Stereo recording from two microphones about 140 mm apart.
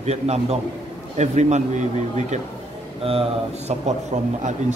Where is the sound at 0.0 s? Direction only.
50° right (ahead or behind).